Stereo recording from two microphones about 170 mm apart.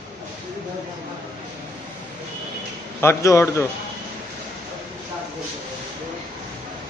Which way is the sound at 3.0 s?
15° left (ahead or behind).